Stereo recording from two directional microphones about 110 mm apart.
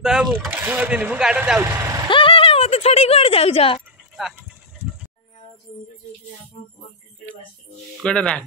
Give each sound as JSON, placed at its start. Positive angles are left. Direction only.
{"t": 0.0, "sound": "speech", "side_deg": -5}
{"t": 1.7, "sound": "vehicle", "side_deg": -30}
{"t": 2.0, "sound": "a sound", "side_deg": 50}
{"t": 8.0, "sound": "speech", "side_deg": 10}